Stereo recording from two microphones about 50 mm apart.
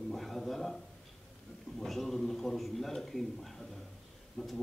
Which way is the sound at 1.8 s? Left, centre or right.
Centre.